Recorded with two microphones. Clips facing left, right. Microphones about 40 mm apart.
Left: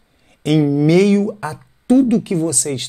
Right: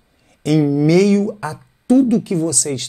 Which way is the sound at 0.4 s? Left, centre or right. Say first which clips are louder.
Even; left.